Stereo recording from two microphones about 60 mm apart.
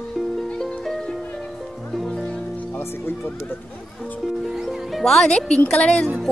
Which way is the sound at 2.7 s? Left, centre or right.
Left.